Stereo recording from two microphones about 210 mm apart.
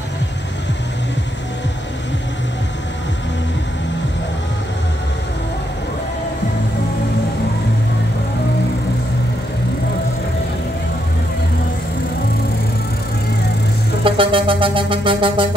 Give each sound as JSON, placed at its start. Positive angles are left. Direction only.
{"t": 14.0, "sound": "music", "side_deg": -25}